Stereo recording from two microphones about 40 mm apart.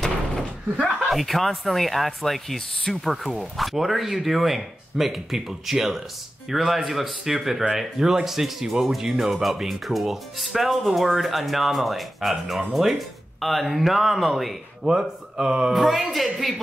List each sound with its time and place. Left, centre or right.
1.1 s speech: centre
14.9 s speech: centre
15.7 s speech: centre